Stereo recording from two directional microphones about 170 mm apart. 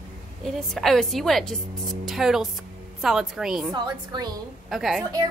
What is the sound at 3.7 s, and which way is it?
Speech, 25° right (ahead or behind).